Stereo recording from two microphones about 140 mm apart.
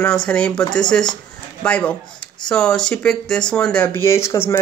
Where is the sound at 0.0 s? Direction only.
5° left (ahead or behind).